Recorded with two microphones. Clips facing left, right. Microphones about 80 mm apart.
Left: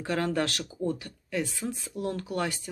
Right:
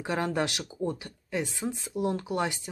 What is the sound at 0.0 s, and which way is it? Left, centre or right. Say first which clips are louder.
Speech: left 1 dB; centre.